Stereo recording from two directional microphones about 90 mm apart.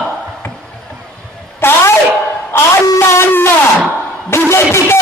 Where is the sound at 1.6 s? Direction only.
25° left (ahead or behind).